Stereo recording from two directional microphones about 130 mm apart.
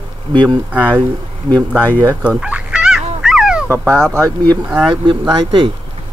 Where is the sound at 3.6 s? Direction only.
20° right (ahead or behind).